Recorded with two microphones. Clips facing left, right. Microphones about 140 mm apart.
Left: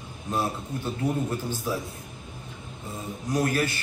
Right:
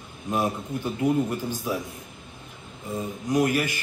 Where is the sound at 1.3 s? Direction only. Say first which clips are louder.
Right 1 dB; 15° right (ahead or behind).